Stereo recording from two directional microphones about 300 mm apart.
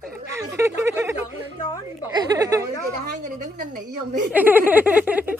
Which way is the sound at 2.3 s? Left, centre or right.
Centre.